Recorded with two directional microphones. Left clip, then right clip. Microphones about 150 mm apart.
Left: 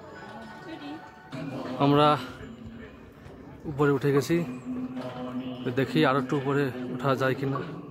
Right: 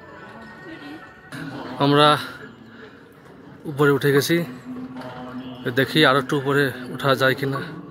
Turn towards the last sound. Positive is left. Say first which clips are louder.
# right 7 dB
turn(degrees=0)  # may be behind; listen again after turning